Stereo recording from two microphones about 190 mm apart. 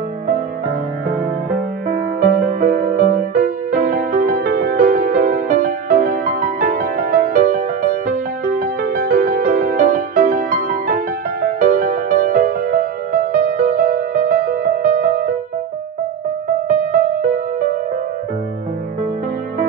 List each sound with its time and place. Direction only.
1.9 s music: 45° right (ahead or behind)
9.1 s music: 45° right (ahead or behind)
16.9 s music: 45° right (ahead or behind)